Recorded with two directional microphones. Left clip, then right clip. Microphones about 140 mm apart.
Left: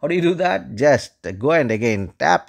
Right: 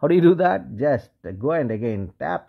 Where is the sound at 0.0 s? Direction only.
15° right (ahead or behind).